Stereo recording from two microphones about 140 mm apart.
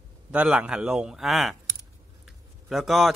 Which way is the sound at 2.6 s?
Centre (ahead or behind).